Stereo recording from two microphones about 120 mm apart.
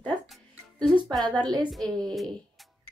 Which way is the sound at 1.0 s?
40° right (ahead or behind).